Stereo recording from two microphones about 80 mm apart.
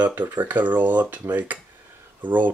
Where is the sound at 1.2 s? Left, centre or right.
Right.